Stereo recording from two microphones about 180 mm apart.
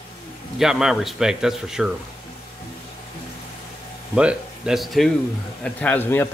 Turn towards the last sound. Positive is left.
turn(degrees=10)  # may be behind; listen again after turning